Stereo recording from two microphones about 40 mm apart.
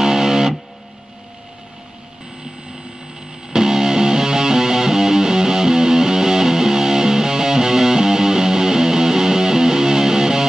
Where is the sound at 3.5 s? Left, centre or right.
Centre.